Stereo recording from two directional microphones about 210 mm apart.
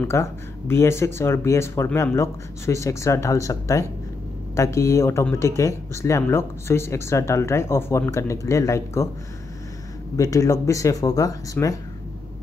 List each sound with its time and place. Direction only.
0.0 s speech: 10° left (ahead or behind)
10.1 s speech: 15° left (ahead or behind)